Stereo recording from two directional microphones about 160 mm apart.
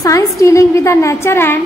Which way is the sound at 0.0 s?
20° left (ahead or behind).